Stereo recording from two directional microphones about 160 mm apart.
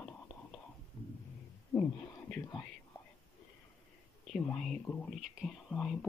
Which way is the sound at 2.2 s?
10° left (ahead or behind).